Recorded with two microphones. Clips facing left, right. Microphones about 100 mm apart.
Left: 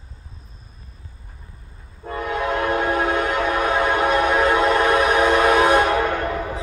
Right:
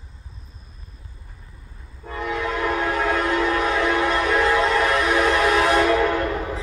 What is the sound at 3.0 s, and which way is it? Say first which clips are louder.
Train: even; 20° left (ahead or behind).